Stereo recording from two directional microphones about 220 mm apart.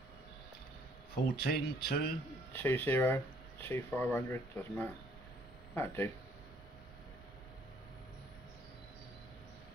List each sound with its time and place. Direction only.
1.1 s speech: 45° left (ahead or behind)
2.5 s speech: 10° left (ahead or behind)